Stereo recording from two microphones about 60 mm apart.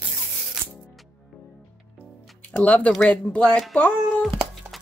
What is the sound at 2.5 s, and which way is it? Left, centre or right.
Speech, left.